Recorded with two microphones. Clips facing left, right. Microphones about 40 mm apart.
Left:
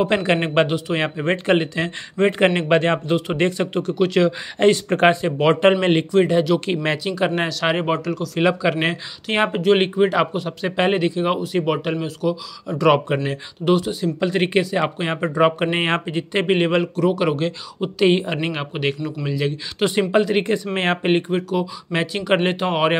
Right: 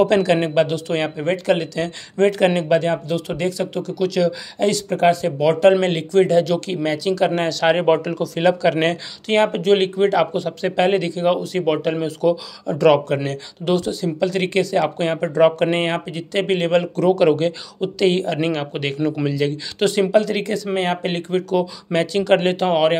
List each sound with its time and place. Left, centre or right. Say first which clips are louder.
0.0 s speech: right 3 dB; left
2.7 s speech: left 1 dB; left
5.4 s speech: right 1 dB; left
6.1 s speech: right 5 dB; centre
6.6 s speech: even; left
7.1 s speech: right 5 dB; centre
7.8 s speech: right 4 dB; centre
8.4 s speech: right 2 dB; centre
16.8 s speech: right 4 dB; centre; by 21.0 s left
21.0 s speech: left 3 dB; centre